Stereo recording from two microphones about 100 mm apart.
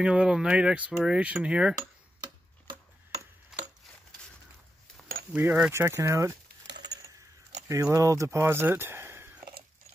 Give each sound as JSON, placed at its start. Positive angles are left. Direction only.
{"t": 0.0, "sound": "speech", "side_deg": -5}
{"t": 1.8, "sound": "tick-tock", "side_deg": -45}
{"t": 3.5, "sound": "a sound", "side_deg": -5}
{"t": 5.3, "sound": "speech", "side_deg": -10}
{"t": 5.7, "sound": "speech", "side_deg": -25}
{"t": 7.6, "sound": "speech", "side_deg": -30}